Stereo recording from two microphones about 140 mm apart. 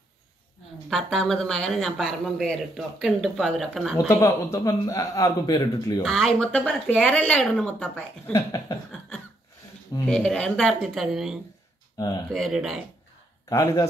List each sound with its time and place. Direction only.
0.8 s speech: centre (ahead or behind)
4.1 s a man's voice: 20° left (ahead or behind)
6.0 s speech: centre (ahead or behind)
8.3 s a man's voice: 25° left (ahead or behind)
10.0 s speech: 5° left (ahead or behind)
12.0 s a man's voice: 25° left (ahead or behind)
12.3 s speech: centre (ahead or behind)
13.5 s a man's voice: 25° left (ahead or behind)